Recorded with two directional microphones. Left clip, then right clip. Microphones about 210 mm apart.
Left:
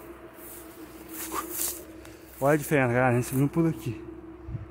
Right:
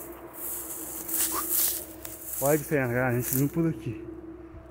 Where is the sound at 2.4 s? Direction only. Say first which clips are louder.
Left 2 dB; 35° left (ahead or behind).